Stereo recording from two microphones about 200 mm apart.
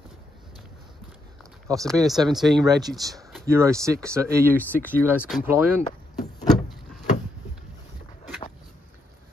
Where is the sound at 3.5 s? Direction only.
15° right (ahead or behind).